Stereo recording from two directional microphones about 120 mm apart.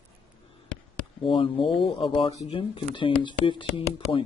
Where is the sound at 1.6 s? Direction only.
Centre (ahead or behind).